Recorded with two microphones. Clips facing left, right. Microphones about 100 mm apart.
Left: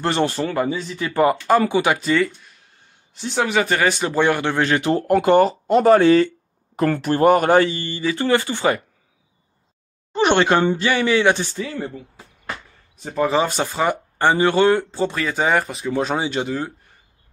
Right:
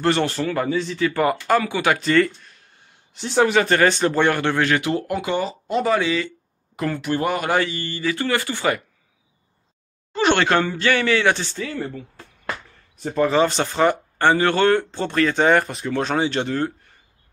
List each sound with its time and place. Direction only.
0.0 s speech: 20° left (ahead or behind)
10.1 s speech: 20° left (ahead or behind)
13.0 s speech: 10° left (ahead or behind)